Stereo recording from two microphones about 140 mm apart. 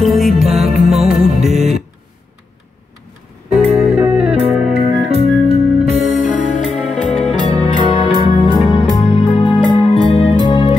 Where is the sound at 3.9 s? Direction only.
10° right (ahead or behind).